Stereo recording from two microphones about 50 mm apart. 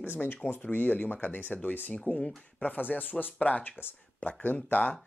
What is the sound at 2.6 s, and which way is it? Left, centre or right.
Speech, left.